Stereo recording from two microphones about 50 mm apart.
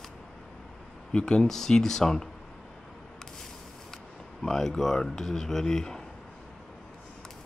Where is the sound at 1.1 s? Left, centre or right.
Centre.